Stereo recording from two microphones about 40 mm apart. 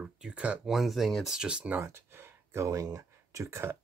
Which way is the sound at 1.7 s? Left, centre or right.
Right.